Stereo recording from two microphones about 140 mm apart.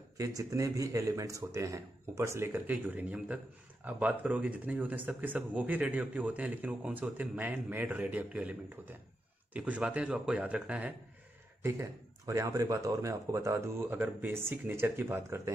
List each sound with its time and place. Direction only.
0.2 s speech: 25° right (ahead or behind)
11.6 s speech: 20° right (ahead or behind)